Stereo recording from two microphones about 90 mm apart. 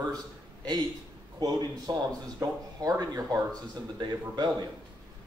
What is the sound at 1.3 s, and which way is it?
Speech, 45° right (ahead or behind).